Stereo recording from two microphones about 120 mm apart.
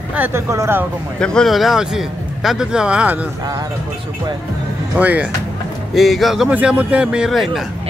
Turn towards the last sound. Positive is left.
turn(degrees=0)  # may be behind; listen again after turning